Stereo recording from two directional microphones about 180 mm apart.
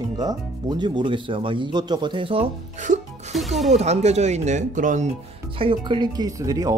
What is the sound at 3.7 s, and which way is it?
Speech, 35° right (ahead or behind).